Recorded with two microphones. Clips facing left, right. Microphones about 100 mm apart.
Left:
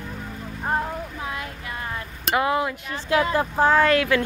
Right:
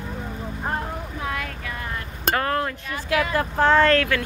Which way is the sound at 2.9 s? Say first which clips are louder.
Left 2 dB; 25° left (ahead or behind).